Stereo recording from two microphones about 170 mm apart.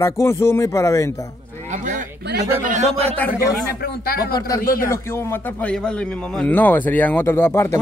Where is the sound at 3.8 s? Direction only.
65° left (ahead or behind).